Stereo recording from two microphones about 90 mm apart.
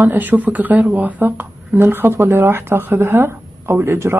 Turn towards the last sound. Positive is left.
turn(degrees=-25)  # may be behind; listen again after turning